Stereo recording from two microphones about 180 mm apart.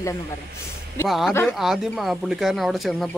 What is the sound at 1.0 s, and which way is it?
Speech, centre (ahead or behind).